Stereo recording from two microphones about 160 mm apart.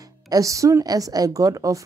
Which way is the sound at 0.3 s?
20° right (ahead or behind).